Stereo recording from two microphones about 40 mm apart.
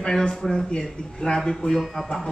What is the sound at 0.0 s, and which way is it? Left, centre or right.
A man's voice, centre.